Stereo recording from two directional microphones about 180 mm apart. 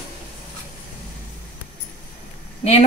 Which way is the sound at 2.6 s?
35° left (ahead or behind).